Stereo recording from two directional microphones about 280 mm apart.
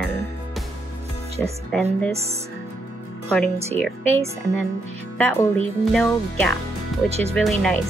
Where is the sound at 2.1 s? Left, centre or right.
Right.